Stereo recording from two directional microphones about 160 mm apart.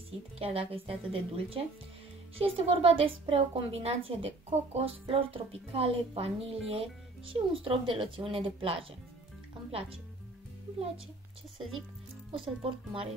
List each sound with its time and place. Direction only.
0.4 s a woman's voice: 35° right (ahead or behind)
12.3 s a woman's voice: 35° right (ahead or behind)